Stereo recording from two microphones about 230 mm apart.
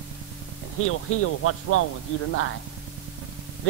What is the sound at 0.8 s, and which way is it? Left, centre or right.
A man's voice, left.